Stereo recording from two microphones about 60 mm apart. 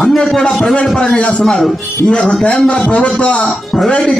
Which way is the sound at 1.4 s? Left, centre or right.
Centre.